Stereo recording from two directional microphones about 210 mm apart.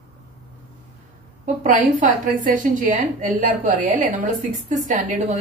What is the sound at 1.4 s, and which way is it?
A woman's voice, 35° right (ahead or behind).